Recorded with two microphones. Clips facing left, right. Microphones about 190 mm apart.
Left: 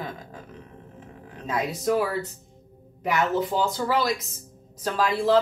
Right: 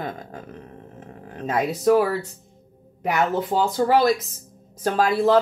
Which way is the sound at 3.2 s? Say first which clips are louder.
Right 2 dB; 55° right (ahead or behind).